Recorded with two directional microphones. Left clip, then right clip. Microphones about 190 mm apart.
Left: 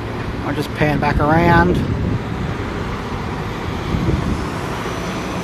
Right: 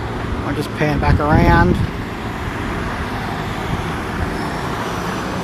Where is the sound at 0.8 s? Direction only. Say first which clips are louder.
Left 1 dB; centre (ahead or behind).